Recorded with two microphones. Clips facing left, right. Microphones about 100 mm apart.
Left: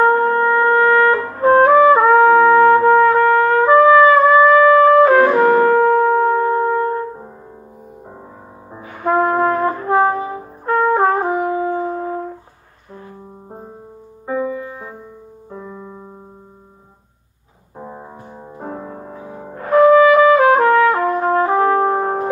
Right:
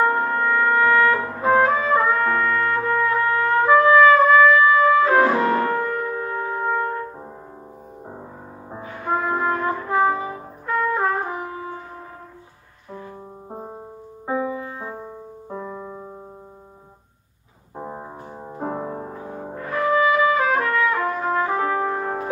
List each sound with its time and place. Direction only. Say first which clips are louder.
0.0 s music: left 6 dB; 45° left (ahead or behind)
5.1 s brass instrument: left 6 dB; 75° left (ahead or behind); by 6.3 s 60° left (ahead or behind)
6.3 s shofar: left 8 dB; 40° left (ahead or behind)
8.8 s brass instrument: left 8 dB; 65° left (ahead or behind); by 12.1 s 85° left
14.2 s music: left 3 dB; 15° right (ahead or behind)
15.6 s piano: right 1 dB; centre (ahead or behind)
17.7 s music: even; 20° right (ahead or behind)
18.6 s music: right 2 dB; 30° right (ahead or behind)
19.5 s trumpet: left 11 dB; 60° left (ahead or behind); by 22.3 s 45° left (ahead or behind)